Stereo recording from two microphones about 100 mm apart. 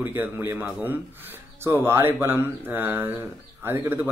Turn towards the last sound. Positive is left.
turn(degrees=-25)  # may be behind; listen again after turning